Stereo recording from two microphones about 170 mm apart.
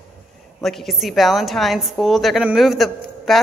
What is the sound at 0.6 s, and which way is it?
A woman's voice, centre (ahead or behind).